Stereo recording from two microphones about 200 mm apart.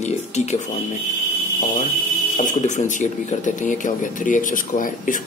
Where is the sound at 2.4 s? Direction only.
40° left (ahead or behind).